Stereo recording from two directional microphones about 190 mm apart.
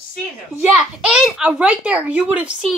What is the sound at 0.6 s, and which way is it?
A child's voice, 5° right (ahead or behind).